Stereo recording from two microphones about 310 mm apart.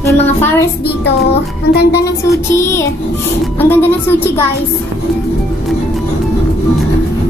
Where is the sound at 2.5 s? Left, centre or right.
Centre.